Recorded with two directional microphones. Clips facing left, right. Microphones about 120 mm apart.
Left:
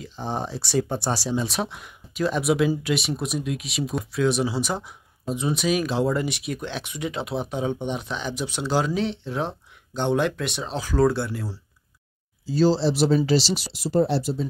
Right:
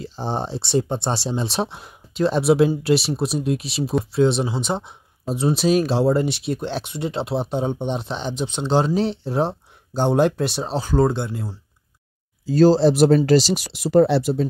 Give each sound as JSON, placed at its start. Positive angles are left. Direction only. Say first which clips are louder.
{"t": 0.0, "sound": "speech", "louder": "right 3 dB", "side_deg": -30}
{"t": 12.4, "sound": "speech", "louder": "right 6 dB", "side_deg": -50}
{"t": 13.7, "sound": "speech", "louder": "right 7 dB", "side_deg": -70}